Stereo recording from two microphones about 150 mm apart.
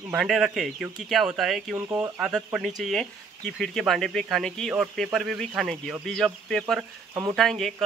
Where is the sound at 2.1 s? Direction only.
5° right (ahead or behind).